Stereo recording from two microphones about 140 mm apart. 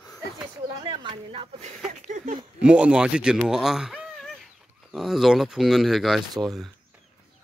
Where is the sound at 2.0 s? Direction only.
70° right (ahead or behind).